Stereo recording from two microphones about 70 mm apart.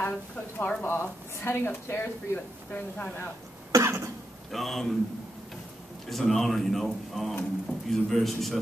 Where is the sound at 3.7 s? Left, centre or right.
Right.